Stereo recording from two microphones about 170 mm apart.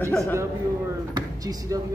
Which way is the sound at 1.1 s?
20° right (ahead or behind).